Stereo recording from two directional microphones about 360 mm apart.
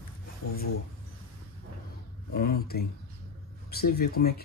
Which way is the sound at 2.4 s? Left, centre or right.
Left.